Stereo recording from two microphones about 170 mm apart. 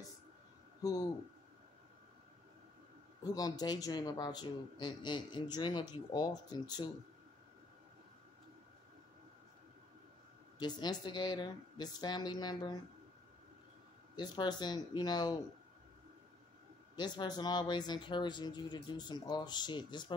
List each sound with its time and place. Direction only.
0.8 s speech: 20° left (ahead or behind)
3.3 s speech: 20° left (ahead or behind)
10.6 s speech: 25° left (ahead or behind)
14.1 s speech: 25° left (ahead or behind)
16.9 s speech: 25° left (ahead or behind)